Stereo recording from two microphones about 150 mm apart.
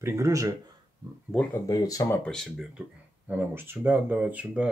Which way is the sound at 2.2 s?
5° left (ahead or behind).